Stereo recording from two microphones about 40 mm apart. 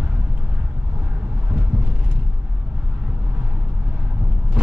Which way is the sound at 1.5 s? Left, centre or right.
Centre.